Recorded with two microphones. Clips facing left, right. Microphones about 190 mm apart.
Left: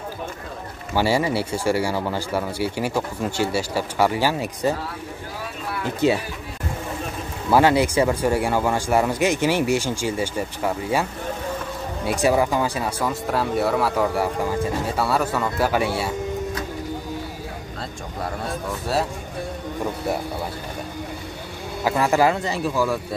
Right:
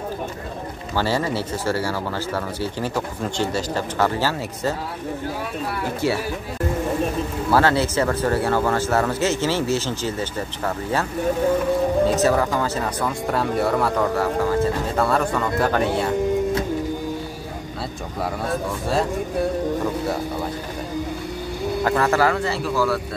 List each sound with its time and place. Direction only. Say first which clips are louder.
0.9 s speech: left 2 dB; 15° left (ahead or behind)
5.9 s speech: left 4 dB; 20° left (ahead or behind)
7.5 s speech: left 2 dB; 15° left (ahead or behind)
12.1 s speech: right 1 dB; 15° left (ahead or behind)
21.8 s speech: left 1 dB; 10° left (ahead or behind)